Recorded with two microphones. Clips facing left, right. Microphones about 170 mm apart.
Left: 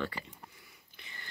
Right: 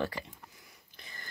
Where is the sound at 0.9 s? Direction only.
40° right (ahead or behind).